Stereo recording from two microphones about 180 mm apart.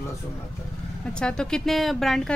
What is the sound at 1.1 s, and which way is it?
Speech, 5° left (ahead or behind).